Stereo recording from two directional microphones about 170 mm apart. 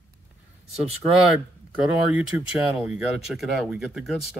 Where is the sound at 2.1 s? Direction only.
10° right (ahead or behind).